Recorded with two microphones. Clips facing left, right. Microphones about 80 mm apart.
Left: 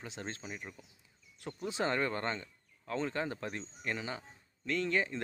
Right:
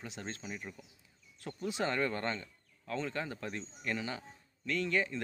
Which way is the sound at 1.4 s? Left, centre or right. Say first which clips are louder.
Even; left.